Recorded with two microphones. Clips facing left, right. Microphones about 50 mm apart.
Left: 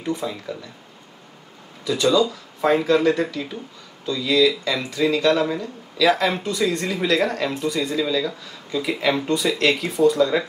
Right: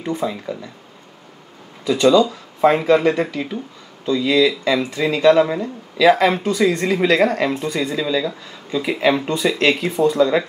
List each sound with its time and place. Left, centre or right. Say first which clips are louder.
0.0 s speech: right 3 dB; right
1.9 s speech: right 5 dB; right
8.0 s speech: right 2 dB; right